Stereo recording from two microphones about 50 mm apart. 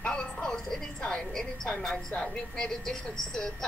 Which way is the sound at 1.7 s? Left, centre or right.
Centre.